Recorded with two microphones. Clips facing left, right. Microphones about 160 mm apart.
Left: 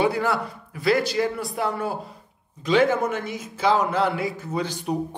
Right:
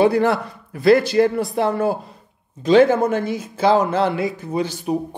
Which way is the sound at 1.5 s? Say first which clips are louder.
Right 7 dB; 40° right (ahead or behind).